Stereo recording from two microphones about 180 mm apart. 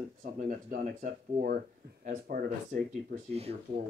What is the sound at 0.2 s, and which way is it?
Speech, 45° right (ahead or behind).